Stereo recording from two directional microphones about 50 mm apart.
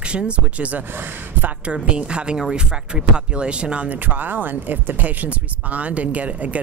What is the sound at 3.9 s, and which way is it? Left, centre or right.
Speech, right.